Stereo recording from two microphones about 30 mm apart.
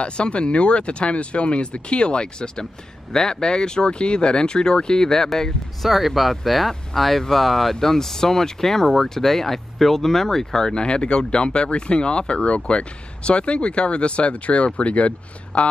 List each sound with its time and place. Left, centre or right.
0.0 s speech: left; by 5.5 s centre
5.8 s speech: centre
10.7 s speech: left